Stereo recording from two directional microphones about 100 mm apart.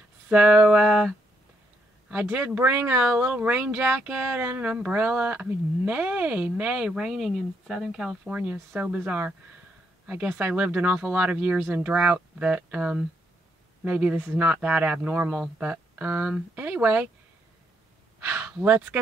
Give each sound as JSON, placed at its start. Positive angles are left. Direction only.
{"t": 0.3, "sound": "speech", "side_deg": -10}
{"t": 2.2, "sound": "speech", "side_deg": -15}
{"t": 8.3, "sound": "speech", "side_deg": -15}
{"t": 18.6, "sound": "speech", "side_deg": -15}